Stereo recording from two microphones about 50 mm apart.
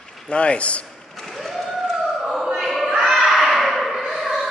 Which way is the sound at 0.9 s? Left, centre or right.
Centre.